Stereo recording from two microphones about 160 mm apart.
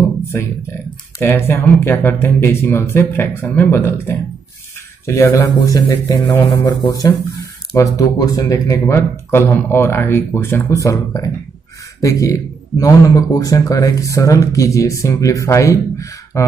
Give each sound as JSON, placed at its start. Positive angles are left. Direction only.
{"t": 1.2, "sound": "speech", "side_deg": 15}